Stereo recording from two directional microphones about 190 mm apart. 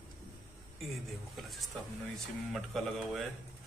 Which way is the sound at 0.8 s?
Centre (ahead or behind).